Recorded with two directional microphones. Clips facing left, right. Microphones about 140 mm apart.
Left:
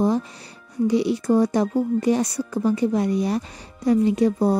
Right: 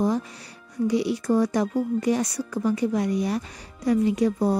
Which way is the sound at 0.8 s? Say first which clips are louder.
Left 3 dB; 25° left (ahead or behind).